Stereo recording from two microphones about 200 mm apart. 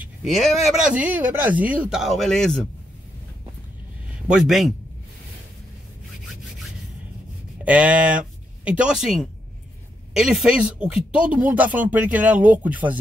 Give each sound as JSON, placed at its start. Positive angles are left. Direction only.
{"t": 0.0, "sound": "speech", "side_deg": 0}
{"t": 4.3, "sound": "speech", "side_deg": 0}
{"t": 7.6, "sound": "speech", "side_deg": -5}